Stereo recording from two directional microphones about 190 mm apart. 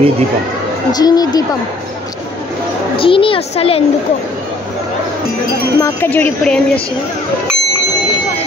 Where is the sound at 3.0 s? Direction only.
30° left (ahead or behind).